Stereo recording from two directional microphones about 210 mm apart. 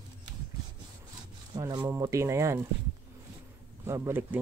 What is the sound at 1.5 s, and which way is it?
Speech, 20° right (ahead or behind).